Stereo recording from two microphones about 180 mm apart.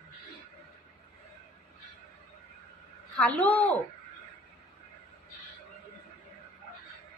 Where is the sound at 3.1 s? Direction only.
5° left (ahead or behind).